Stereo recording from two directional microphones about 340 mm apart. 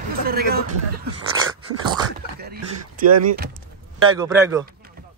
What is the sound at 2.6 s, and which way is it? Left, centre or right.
Speech, right.